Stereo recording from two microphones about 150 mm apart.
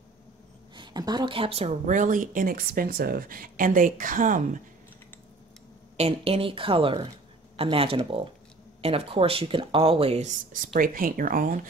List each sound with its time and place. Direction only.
0.7 s speech: 25° right (ahead or behind); by 4.6 s 60° right (ahead or behind)
5.9 s speech: 45° right (ahead or behind)
10.8 s speech: 65° right (ahead or behind)